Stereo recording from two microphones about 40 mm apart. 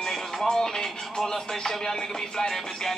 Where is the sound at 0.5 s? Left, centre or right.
Centre.